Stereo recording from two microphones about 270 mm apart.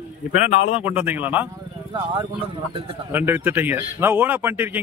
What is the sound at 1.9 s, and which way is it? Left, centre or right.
Speech, centre.